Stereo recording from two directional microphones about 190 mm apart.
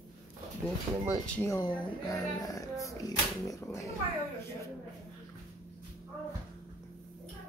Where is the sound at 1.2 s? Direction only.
10° left (ahead or behind).